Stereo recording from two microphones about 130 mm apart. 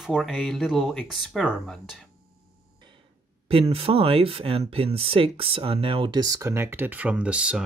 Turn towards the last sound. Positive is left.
turn(degrees=-10)  # may be behind; listen again after turning